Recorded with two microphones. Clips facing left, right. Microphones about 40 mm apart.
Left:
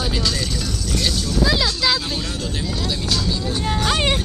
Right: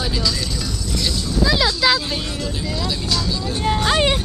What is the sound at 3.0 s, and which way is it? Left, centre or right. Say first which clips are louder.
Vehicle: left 1 dB; left.